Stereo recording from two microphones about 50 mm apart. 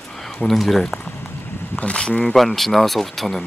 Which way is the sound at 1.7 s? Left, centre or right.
Left.